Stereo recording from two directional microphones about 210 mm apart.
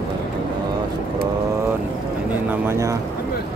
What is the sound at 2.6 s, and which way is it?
Speech, 15° right (ahead or behind).